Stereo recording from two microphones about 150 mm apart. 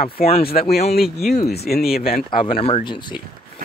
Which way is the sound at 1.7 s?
90° left.